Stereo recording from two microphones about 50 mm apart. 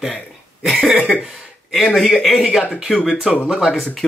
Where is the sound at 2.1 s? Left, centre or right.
Centre.